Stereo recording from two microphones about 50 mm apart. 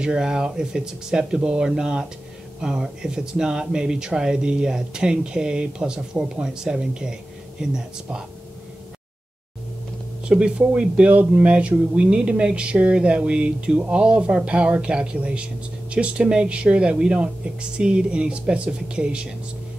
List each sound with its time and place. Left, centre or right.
0.0 s speech: centre
10.2 s speech: centre